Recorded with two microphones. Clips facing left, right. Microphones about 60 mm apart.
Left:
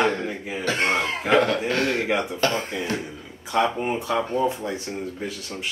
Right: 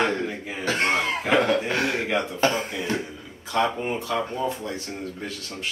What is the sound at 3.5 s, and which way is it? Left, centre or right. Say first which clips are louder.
Speech: left 2 dB; centre.